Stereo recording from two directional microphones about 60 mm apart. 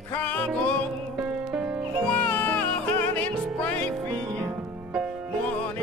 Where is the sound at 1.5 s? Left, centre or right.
Right.